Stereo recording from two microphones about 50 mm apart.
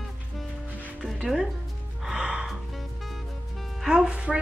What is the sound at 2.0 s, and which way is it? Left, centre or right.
Music, centre.